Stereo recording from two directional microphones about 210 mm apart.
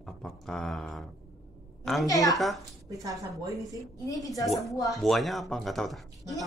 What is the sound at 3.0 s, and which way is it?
Speech, 15° right (ahead or behind).